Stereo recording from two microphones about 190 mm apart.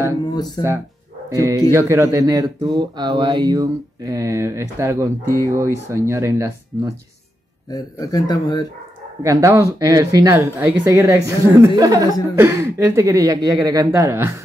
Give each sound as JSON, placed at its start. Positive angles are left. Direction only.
{"t": 0.3, "sound": "speech", "side_deg": 20}
{"t": 1.3, "sound": "speech", "side_deg": -15}
{"t": 7.7, "sound": "speech", "side_deg": 20}
{"t": 9.2, "sound": "speech", "side_deg": -15}